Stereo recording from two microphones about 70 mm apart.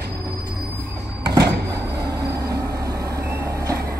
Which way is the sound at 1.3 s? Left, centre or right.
Right.